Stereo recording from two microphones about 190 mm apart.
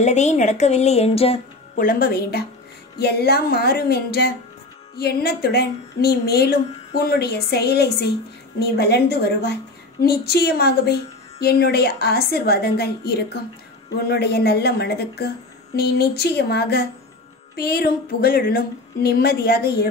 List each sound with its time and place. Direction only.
0.0 s speech: 35° left (ahead or behind)
1.8 s a woman's voice: 50° left (ahead or behind)